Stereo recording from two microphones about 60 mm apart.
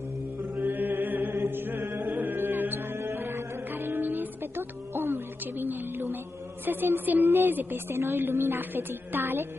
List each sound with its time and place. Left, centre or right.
0.4 s mantra: right
0.7 s chant: right
2.2 s music: right
6.6 s a woman's voice: right